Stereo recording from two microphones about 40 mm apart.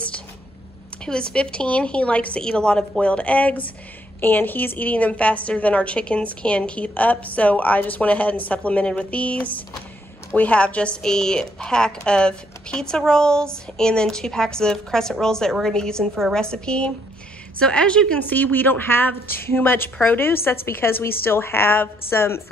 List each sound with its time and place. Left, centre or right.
1.0 s a woman's voice: left
2.4 s a woman's voice: centre
3.0 s a woman's voice: left
4.2 s a woman's voice: left
11.0 s a woman's voice: centre
18.3 s a woman's voice: left